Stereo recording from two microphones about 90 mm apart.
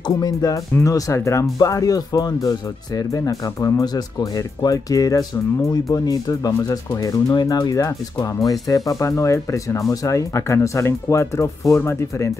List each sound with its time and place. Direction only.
0.0 s speech: 45° left (ahead or behind); by 12.3 s 30° left (ahead or behind)